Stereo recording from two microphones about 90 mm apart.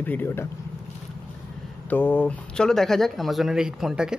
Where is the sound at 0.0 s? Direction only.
20° left (ahead or behind).